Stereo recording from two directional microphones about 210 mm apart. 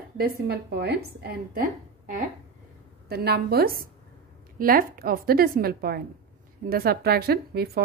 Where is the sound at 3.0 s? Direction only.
50° right (ahead or behind).